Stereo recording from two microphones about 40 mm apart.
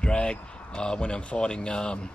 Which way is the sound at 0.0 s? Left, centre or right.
Left.